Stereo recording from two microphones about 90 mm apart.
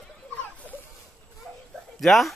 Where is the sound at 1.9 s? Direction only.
Centre (ahead or behind).